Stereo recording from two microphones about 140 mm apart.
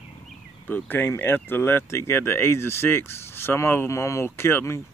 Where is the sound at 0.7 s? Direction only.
15° left (ahead or behind).